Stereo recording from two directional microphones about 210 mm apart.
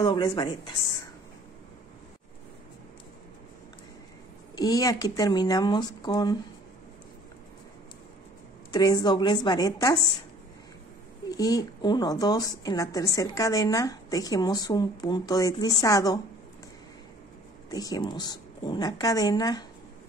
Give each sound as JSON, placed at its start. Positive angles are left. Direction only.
{"t": 0.0, "sound": "a woman's voice", "side_deg": 20}
{"t": 4.6, "sound": "a woman's voice", "side_deg": 15}
{"t": 8.7, "sound": "a woman's voice", "side_deg": 20}
{"t": 11.2, "sound": "a woman's voice", "side_deg": 15}
{"t": 17.6, "sound": "a woman's voice", "side_deg": 15}